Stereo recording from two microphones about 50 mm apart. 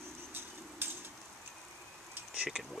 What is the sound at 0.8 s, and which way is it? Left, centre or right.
Bird, right.